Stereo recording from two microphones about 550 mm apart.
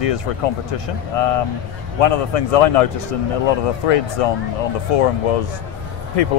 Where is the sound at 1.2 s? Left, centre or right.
Left.